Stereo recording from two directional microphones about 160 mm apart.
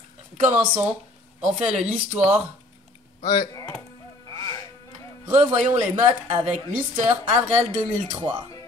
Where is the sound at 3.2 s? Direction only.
25° left (ahead or behind).